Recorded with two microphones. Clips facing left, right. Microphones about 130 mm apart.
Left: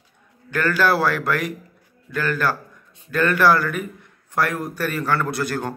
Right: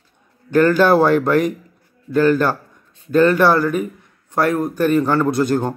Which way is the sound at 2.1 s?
30° right (ahead or behind).